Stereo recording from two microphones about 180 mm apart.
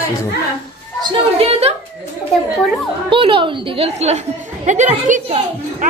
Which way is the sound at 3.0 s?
30° right (ahead or behind).